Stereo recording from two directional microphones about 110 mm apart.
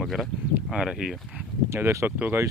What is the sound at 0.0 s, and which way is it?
Speech, centre (ahead or behind).